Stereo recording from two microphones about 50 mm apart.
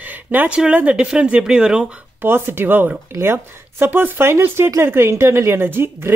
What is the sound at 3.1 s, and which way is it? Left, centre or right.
Speech, right.